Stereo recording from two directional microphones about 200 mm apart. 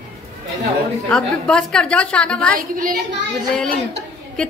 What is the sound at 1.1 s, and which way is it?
Speech, 5° left (ahead or behind).